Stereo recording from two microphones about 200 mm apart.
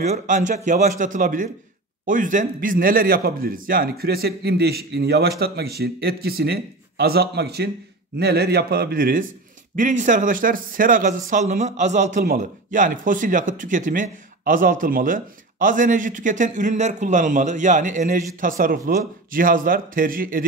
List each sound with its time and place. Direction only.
0.0 s speech: 40° right (ahead or behind)